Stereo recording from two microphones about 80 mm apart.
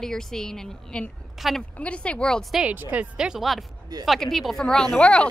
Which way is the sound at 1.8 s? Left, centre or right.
Centre.